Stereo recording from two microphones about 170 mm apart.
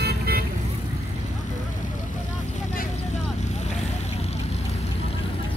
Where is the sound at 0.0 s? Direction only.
65° right (ahead or behind).